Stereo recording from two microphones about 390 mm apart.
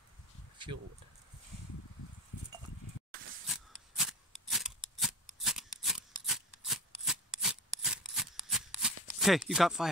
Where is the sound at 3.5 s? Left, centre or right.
Centre.